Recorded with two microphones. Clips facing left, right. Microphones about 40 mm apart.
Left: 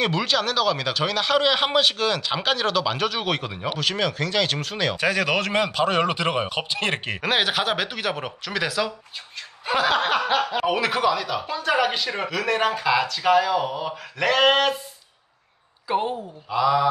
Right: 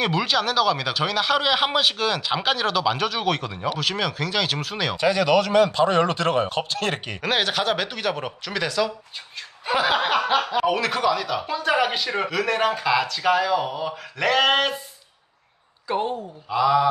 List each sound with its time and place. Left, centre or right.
0.0 s speech: centre
3.8 s speech: centre
5.0 s speech: left; by 8.9 s centre
9.7 s speech: centre
15.9 s speech: centre